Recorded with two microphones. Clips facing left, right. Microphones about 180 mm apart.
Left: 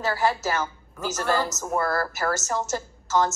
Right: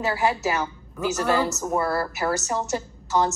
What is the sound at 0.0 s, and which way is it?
Speech, 15° right (ahead or behind).